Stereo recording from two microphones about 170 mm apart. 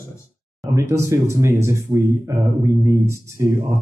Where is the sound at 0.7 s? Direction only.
15° right (ahead or behind).